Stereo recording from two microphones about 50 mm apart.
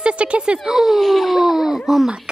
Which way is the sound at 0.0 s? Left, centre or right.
Right.